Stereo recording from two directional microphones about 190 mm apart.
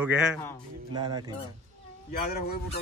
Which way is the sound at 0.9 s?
20° right (ahead or behind).